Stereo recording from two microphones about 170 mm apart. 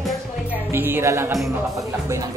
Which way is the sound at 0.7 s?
15° right (ahead or behind).